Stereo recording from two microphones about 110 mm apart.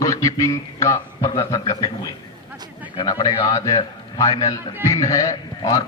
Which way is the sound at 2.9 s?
45° left (ahead or behind).